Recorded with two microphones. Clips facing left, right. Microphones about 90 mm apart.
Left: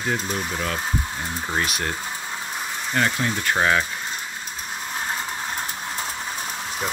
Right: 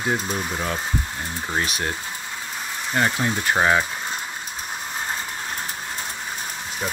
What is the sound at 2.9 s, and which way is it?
Speech, 15° right (ahead or behind).